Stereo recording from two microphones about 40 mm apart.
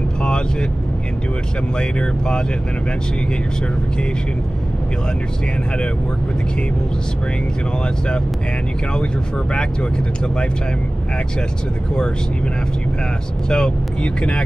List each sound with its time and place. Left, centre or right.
0.2 s vehicle: left
1.8 s speech: left
9.5 s speech: left
13.5 s speech: left